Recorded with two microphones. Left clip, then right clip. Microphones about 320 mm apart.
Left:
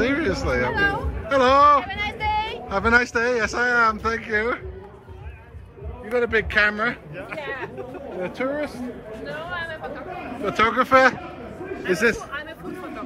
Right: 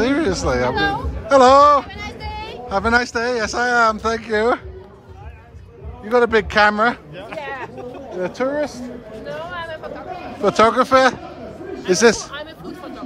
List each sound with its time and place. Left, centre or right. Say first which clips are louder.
0.0 s speech: right 4 dB; centre
6.0 s speech: right 6 dB; centre
7.2 s a sound: right 2 dB; right
8.2 s speech: right 5 dB; centre
9.2 s a sound: right 2 dB; right
10.5 s speech: right 4 dB; centre